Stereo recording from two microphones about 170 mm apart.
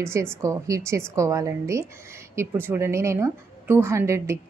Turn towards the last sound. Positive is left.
turn(degrees=-15)  # may be behind; listen again after turning